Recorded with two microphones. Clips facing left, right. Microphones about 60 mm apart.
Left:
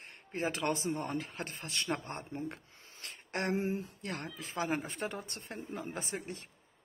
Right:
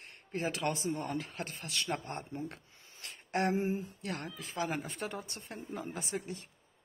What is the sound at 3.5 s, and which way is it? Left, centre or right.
Speech, left.